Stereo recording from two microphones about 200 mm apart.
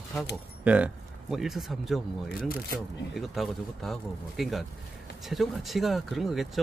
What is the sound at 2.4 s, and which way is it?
Speech, 45° left (ahead or behind).